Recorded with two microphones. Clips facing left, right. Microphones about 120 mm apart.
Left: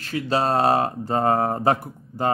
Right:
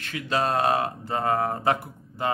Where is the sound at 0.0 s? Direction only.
30° left (ahead or behind).